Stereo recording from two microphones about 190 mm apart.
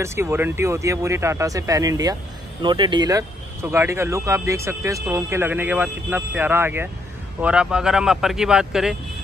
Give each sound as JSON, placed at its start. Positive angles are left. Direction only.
{"t": 0.0, "sound": "speech", "side_deg": -15}